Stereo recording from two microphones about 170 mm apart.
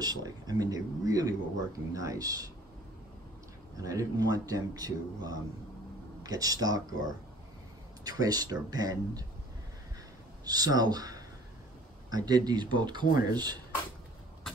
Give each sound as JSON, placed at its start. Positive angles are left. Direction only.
{"t": 0.0, "sound": "speech", "side_deg": -25}
{"t": 3.7, "sound": "speech", "side_deg": -20}
{"t": 8.0, "sound": "speech", "side_deg": -20}
{"t": 10.4, "sound": "speech", "side_deg": -20}